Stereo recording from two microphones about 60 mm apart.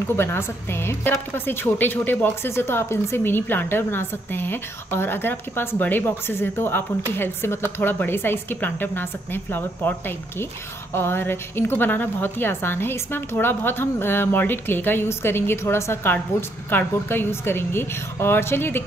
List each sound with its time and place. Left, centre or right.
0.1 s a woman's voice: left
7.8 s a woman's voice: left